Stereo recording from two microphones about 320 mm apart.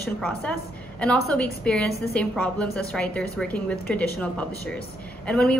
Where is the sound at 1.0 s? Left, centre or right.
Centre.